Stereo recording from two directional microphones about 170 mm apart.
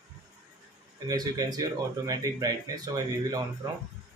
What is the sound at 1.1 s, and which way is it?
Speech, 25° right (ahead or behind).